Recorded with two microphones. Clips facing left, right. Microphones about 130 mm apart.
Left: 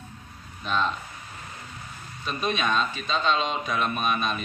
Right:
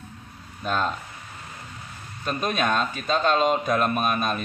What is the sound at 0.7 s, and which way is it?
Speech, 45° right (ahead or behind).